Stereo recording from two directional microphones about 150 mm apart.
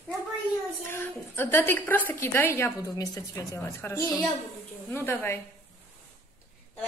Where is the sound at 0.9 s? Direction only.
15° left (ahead or behind).